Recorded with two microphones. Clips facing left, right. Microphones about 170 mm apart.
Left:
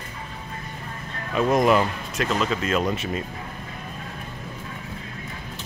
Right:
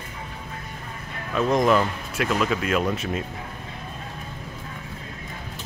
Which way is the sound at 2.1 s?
5° right (ahead or behind).